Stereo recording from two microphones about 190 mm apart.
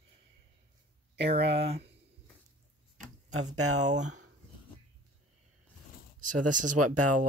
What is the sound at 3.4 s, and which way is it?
Speech, 40° right (ahead or behind).